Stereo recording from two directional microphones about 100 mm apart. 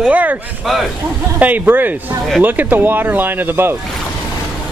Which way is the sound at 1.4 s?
20° right (ahead or behind).